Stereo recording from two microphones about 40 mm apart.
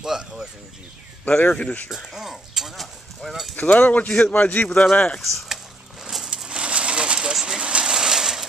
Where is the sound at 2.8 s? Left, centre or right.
Centre.